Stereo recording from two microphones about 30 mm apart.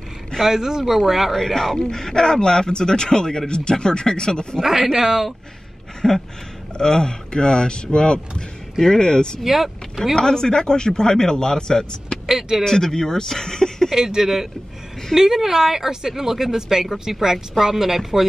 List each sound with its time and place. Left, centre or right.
0.4 s speech: centre
1.3 s speech: centre
1.8 s speech: left
4.9 s speech: centre
6.0 s a sound: centre
6.8 s speech: left
9.4 s speech: centre
10.1 s speech: left
12.3 s speech: centre
12.6 s speech: centre
13.9 s speech: centre